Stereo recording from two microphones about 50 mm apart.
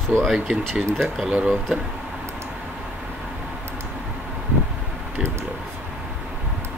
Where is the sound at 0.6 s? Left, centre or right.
Centre.